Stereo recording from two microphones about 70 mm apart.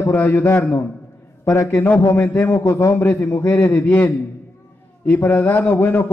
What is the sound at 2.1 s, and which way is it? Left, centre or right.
A man's voice, left.